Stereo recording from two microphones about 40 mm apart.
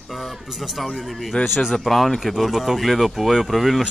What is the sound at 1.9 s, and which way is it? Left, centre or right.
Speech, centre.